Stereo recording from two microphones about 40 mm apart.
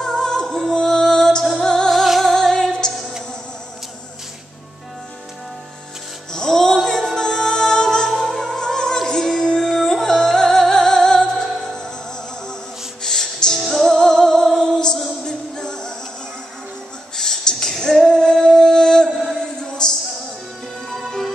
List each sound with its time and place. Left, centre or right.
0.0 s music: centre
1.9 s music: centre
2.3 s music: centre
6.3 s singing: centre
9.6 s music: centre
13.0 s music: centre
13.9 s music: centre
17.1 s a sound: centre
18.0 s music: centre